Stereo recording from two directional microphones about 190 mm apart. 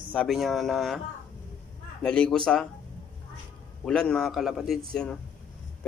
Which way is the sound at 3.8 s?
5° left (ahead or behind).